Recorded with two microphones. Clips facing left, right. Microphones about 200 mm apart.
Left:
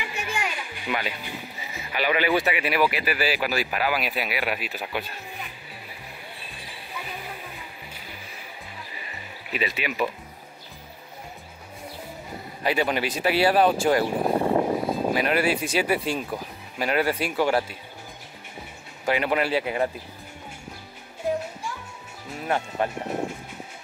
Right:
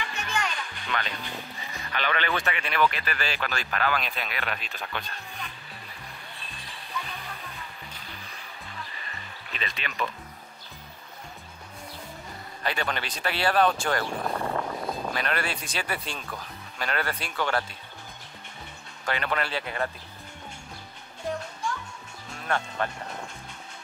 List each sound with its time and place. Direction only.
0.0 s a child's voice: 10° left (ahead or behind)
6.4 s music: 10° left (ahead or behind)
12.6 s speech: 5° left (ahead or behind)
14.3 s vehicle: 25° left (ahead or behind)
15.0 s speech: 5° left (ahead or behind)
19.0 s speech: 10° left (ahead or behind)
21.3 s music: 5° left (ahead or behind)
22.3 s speech: 10° left (ahead or behind)